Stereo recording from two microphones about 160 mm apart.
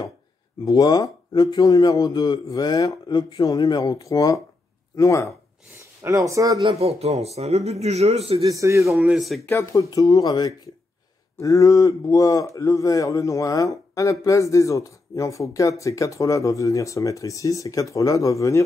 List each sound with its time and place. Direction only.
0.7 s a man's voice: 25° left (ahead or behind)
6.0 s speech: 20° right (ahead or behind)
6.7 s speech: 40° right (ahead or behind)
8.5 s speech: 20° right (ahead or behind)
8.8 s speech: 5° right (ahead or behind)
9.4 s a man's voice: 15° left (ahead or behind)